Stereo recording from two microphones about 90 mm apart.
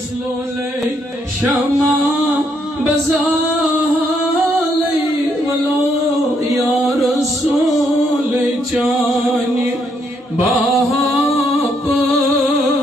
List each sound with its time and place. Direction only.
1.4 s music: centre (ahead or behind)